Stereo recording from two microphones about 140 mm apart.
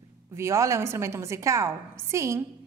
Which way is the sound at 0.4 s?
20° right (ahead or behind).